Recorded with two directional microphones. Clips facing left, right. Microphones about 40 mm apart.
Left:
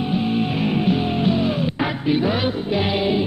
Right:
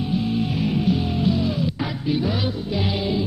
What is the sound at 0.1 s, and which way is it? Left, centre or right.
Music, left.